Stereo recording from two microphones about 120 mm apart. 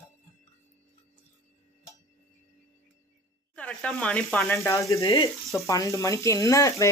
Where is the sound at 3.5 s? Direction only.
10° left (ahead or behind).